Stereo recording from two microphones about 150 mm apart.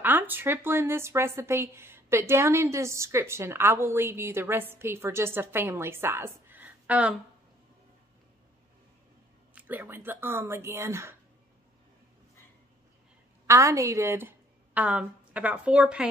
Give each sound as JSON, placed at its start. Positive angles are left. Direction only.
{"t": 0.0, "sound": "speech", "side_deg": -15}
{"t": 9.6, "sound": "speech", "side_deg": -10}
{"t": 13.5, "sound": "a woman's voice", "side_deg": -20}